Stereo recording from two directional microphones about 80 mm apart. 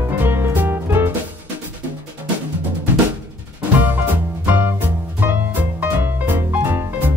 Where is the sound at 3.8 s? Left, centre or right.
Right.